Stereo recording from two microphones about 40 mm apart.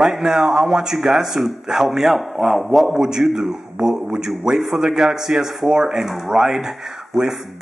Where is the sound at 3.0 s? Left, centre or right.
Centre.